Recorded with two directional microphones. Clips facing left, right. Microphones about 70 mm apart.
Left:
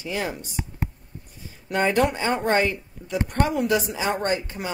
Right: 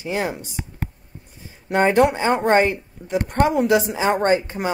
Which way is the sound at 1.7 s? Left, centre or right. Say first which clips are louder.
Right 5 dB; right.